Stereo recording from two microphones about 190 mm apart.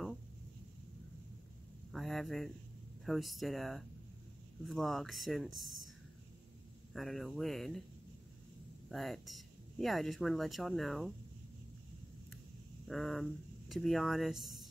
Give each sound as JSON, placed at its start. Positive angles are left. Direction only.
{"t": 1.9, "sound": "a sound", "side_deg": 0}
{"t": 3.1, "sound": "speech", "side_deg": 0}
{"t": 6.9, "sound": "speech", "side_deg": 0}
{"t": 8.8, "sound": "speech", "side_deg": 0}
{"t": 12.8, "sound": "speech", "side_deg": 0}